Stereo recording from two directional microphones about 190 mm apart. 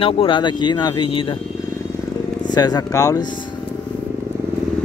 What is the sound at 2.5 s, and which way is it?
Speech, 20° left (ahead or behind).